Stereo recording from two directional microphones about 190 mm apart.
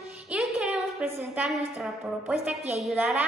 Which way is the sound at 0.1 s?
5° right (ahead or behind).